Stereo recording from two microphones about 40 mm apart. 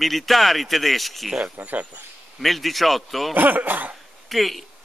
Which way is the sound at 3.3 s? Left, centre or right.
Right.